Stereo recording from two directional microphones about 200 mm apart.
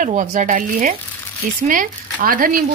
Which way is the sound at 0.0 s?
40° right (ahead or behind).